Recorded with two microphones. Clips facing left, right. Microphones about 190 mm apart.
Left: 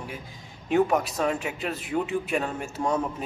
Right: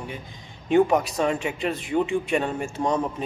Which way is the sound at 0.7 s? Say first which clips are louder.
Right 3 dB; centre (ahead or behind).